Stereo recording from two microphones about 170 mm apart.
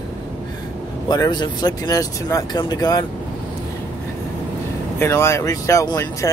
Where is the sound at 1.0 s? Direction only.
25° left (ahead or behind).